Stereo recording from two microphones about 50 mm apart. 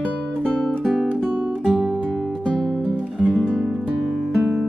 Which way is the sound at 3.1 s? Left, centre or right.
Centre.